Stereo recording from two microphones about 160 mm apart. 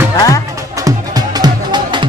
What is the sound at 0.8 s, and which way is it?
Music, 25° right (ahead or behind).